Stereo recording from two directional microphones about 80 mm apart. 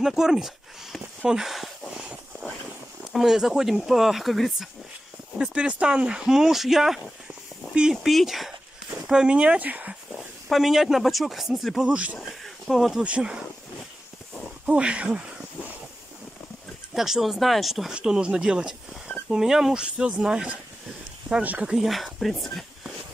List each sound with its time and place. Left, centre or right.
0.0 s speech: centre
0.9 s a sound: centre
3.1 s speech: centre
5.4 s speech: centre
10.5 s speech: centre
11.8 s speech: centre
12.2 s speech: centre
13.0 s speech: centre
14.7 s speech: centre
16.9 s speech: centre
21.6 s speech: centre